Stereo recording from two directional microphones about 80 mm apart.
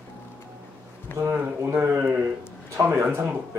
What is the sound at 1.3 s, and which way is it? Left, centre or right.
Speech, right.